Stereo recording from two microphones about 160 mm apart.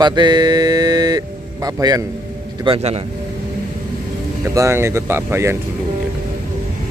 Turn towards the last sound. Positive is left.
turn(degrees=-15)  # may be behind; listen again after turning